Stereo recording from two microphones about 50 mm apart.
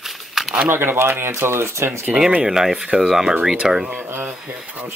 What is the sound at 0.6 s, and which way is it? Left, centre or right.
Speech, right.